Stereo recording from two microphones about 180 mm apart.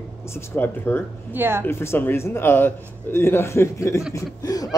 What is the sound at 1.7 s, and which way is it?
Speech, 15° left (ahead or behind).